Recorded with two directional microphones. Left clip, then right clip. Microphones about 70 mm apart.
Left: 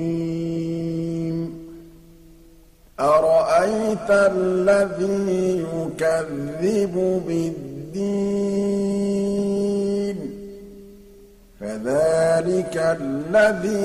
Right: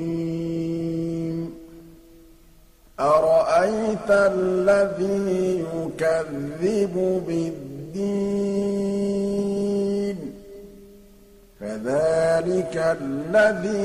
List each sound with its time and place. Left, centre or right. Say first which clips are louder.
0.0 s music: left 2 dB; left
3.0 s mantra: left 1 dB; left
11.6 s mantra: left 2 dB; left